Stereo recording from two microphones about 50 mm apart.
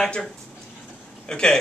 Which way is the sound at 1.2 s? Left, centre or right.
Centre.